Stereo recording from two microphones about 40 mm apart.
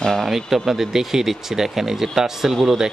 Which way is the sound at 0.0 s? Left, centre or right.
Centre.